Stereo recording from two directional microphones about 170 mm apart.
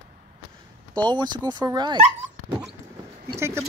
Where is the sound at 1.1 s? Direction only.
25° right (ahead or behind).